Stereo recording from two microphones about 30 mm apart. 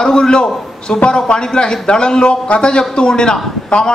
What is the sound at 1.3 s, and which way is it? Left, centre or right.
Speech, left.